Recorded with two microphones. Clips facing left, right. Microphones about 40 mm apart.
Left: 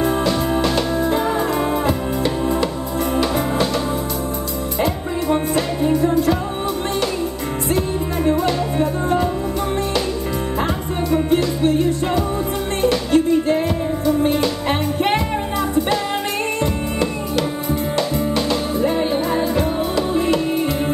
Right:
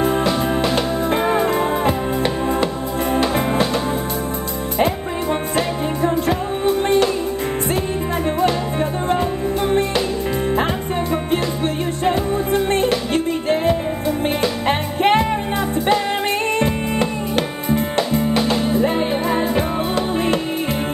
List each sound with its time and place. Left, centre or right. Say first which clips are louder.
0.0 s music: right 1 dB; right
1.1 s music: right 1 dB; right
5.9 s music: left 2 dB; right
8.7 s music: left 1 dB; right
11.1 s music: left 6 dB; right
14.7 s music: right 4 dB; right
17.9 s music: even; right